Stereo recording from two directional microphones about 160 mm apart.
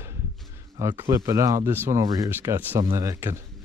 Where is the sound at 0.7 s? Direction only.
15° right (ahead or behind).